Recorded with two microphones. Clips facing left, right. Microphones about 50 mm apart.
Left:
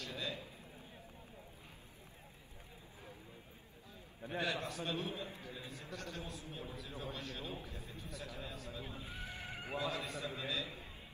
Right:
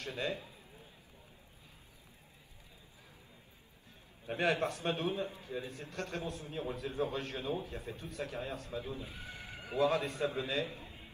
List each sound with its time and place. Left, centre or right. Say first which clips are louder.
0.0 s a man's voice: right 5 dB; right
4.3 s a man's voice: right 7 dB; right
9.3 s horse: even; left
9.8 s a man's voice: right 10 dB; right